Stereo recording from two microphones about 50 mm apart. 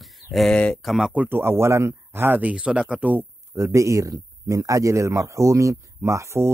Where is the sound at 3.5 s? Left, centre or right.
Right.